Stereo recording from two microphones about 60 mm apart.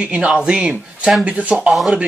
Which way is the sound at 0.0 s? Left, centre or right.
Centre.